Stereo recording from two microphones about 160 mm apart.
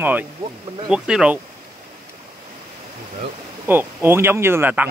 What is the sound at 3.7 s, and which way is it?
Speech, 15° right (ahead or behind).